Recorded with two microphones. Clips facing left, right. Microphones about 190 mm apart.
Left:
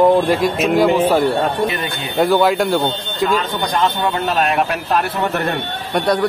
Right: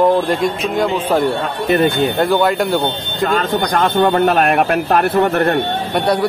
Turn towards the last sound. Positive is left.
turn(degrees=-55)  # may be behind; listen again after turning